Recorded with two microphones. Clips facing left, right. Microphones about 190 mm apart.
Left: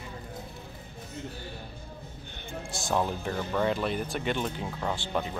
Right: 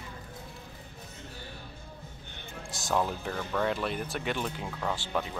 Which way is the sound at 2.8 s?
5° left (ahead or behind).